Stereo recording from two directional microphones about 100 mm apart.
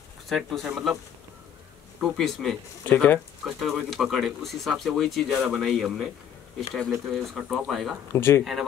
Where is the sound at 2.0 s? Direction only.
Centre (ahead or behind).